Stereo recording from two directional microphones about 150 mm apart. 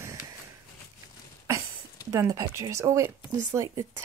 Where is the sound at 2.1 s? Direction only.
20° right (ahead or behind).